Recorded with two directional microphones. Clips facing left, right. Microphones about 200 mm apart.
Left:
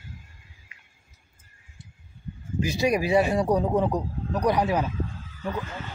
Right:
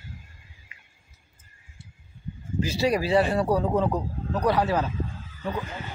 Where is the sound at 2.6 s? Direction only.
15° left (ahead or behind).